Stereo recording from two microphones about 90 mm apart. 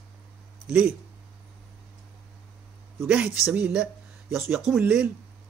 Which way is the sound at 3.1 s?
10° right (ahead or behind).